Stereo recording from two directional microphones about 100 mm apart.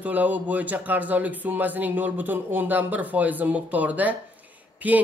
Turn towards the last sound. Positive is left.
turn(degrees=-15)  # may be behind; listen again after turning